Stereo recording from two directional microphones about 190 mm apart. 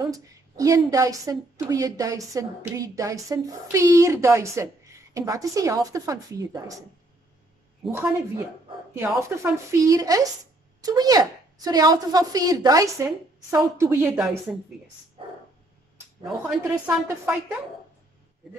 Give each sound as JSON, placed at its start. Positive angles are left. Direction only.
{"t": 0.0, "sound": "a woman's voice", "side_deg": -20}
{"t": 7.8, "sound": "a woman's voice", "side_deg": 0}
{"t": 9.3, "sound": "a woman's voice", "side_deg": -15}
{"t": 16.4, "sound": "a woman's voice", "side_deg": -5}